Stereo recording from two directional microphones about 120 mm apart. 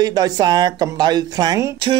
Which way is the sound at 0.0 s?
35° right (ahead or behind).